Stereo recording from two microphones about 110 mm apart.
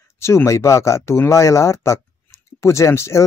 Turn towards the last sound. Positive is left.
turn(degrees=25)  # may be behind; listen again after turning